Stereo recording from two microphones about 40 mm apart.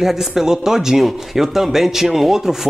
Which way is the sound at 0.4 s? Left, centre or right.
Centre.